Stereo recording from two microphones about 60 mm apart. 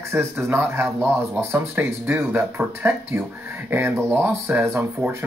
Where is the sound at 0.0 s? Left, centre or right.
Right.